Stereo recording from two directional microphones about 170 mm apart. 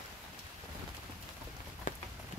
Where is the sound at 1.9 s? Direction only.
50° left (ahead or behind).